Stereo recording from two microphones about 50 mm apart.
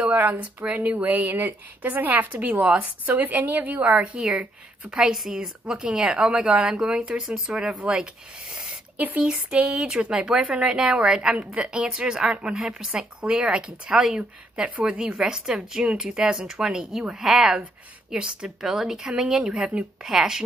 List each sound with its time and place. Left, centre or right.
0.7 s a woman's voice: right
3.9 s speech: right
5.1 s speech: centre
5.4 s speech: centre
8.9 s speech: right
9.2 s speech: centre
12.5 s speech: centre
12.9 s speech: centre